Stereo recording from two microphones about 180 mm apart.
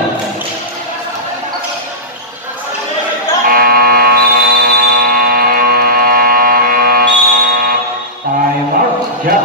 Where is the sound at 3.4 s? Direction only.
55° right (ahead or behind).